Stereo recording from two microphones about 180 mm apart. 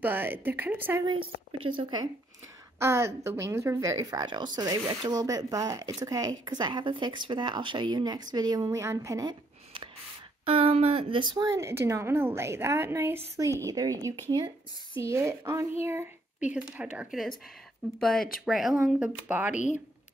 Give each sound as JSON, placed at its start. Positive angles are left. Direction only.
{"t": 0.0, "sound": "a woman's voice", "side_deg": -10}
{"t": 1.0, "sound": "speech", "side_deg": -30}
{"t": 2.8, "sound": "a woman's voice", "side_deg": -15}
{"t": 19.5, "sound": "speech", "side_deg": 40}